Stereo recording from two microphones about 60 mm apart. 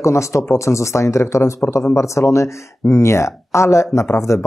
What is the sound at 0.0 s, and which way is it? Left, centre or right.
Speech, left.